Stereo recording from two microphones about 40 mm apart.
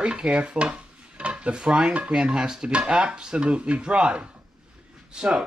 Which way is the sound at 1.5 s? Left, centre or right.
Centre.